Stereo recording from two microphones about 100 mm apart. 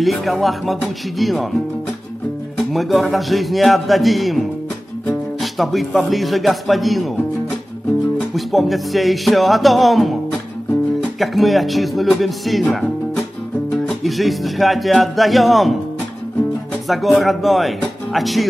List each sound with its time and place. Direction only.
0.0 s a man's voice: centre (ahead or behind)
2.5 s a man's voice: centre (ahead or behind)
8.4 s a man's voice: centre (ahead or behind)
16.8 s speech: centre (ahead or behind)